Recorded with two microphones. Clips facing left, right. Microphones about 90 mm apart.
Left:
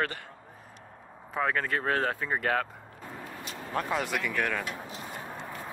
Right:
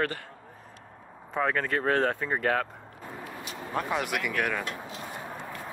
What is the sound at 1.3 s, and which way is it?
Speech, centre (ahead or behind).